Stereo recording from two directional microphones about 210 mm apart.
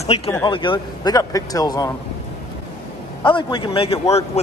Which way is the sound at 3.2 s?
25° left (ahead or behind).